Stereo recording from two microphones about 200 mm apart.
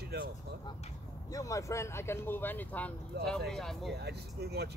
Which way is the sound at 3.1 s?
55° right (ahead or behind).